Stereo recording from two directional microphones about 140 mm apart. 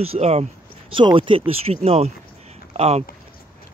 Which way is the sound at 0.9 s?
35° right (ahead or behind).